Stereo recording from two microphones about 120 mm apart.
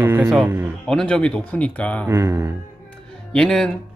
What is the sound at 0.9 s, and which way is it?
Speech, 5° left (ahead or behind).